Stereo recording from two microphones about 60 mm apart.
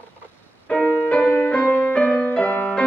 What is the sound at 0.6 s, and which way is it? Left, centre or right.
Music, left.